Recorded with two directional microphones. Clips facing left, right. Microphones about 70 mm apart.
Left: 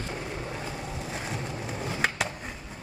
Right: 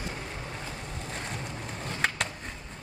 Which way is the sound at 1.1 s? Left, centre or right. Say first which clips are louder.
Left 1 dB; centre.